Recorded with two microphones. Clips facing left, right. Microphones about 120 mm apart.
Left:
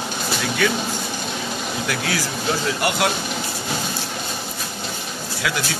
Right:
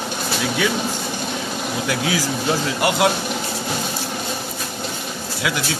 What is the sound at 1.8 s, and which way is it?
Speech, 15° right (ahead or behind).